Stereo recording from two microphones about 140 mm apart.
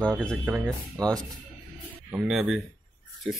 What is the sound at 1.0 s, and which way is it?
Speech, 25° right (ahead or behind).